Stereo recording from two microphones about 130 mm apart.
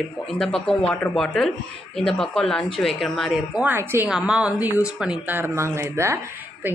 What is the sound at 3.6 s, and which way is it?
Speech, 15° right (ahead or behind).